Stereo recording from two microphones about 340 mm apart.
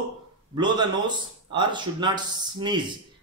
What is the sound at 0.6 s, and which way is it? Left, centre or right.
Speech, centre.